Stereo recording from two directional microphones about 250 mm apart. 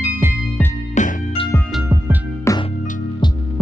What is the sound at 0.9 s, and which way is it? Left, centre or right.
Music, left.